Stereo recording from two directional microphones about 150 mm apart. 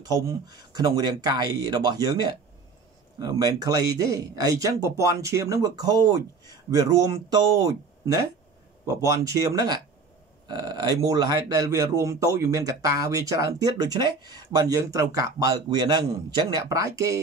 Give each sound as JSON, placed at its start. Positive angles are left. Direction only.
{"t": 0.1, "sound": "speech", "side_deg": -25}